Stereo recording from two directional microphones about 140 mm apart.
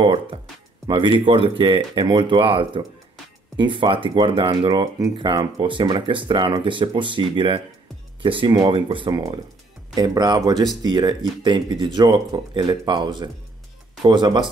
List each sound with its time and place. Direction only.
0.0 s speech: 40° right (ahead or behind)